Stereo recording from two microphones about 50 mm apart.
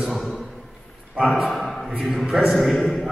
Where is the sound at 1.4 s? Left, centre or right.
Centre.